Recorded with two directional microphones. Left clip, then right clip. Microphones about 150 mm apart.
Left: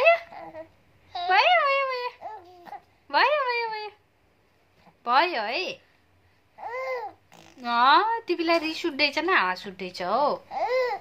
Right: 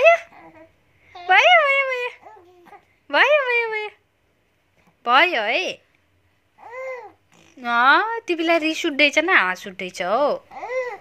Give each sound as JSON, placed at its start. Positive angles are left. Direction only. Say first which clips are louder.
{"t": 0.3, "sound": "babbling", "louder": "left 5 dB", "side_deg": 25}
{"t": 1.3, "sound": "babbling", "louder": "right 6 dB", "side_deg": -20}
{"t": 2.2, "sound": "baby cry", "louder": "left 5 dB", "side_deg": 25}
{"t": 3.1, "sound": "cat", "louder": "right 6 dB", "side_deg": -20}
{"t": 5.0, "sound": "a woman's voice", "louder": "right 6 dB", "side_deg": -20}
{"t": 6.6, "sound": "babbling", "louder": "left 1 dB", "side_deg": 25}
{"t": 7.6, "sound": "a woman's voice", "louder": "right 3 dB", "side_deg": -15}
{"t": 10.5, "sound": "laughter", "louder": "left 2 dB", "side_deg": 25}